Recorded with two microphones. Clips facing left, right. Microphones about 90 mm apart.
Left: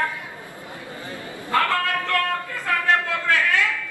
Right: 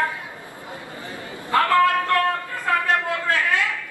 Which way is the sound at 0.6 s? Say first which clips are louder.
Right 1 dB; 20° right (ahead or behind).